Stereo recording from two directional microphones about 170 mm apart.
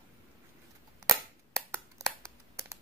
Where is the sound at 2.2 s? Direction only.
20° right (ahead or behind).